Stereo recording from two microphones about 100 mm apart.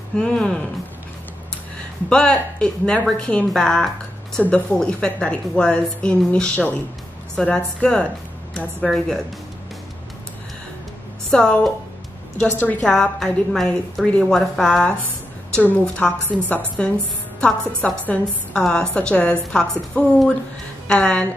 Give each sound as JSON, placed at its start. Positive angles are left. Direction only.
{"t": 0.1, "sound": "a woman's voice", "side_deg": 10}
{"t": 2.0, "sound": "a woman's voice", "side_deg": 10}
{"t": 11.2, "sound": "a woman's voice", "side_deg": 5}
{"t": 12.4, "sound": "a woman's voice", "side_deg": 20}
{"t": 12.8, "sound": "a woman's voice", "side_deg": 5}
{"t": 15.5, "sound": "a woman's voice", "side_deg": 15}